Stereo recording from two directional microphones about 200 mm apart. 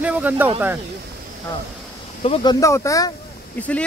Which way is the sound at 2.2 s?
25° left (ahead or behind).